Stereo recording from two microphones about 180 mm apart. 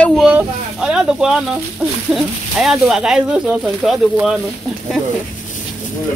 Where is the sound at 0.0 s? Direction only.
Centre (ahead or behind).